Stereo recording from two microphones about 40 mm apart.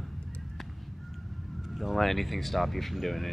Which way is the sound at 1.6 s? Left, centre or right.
Centre.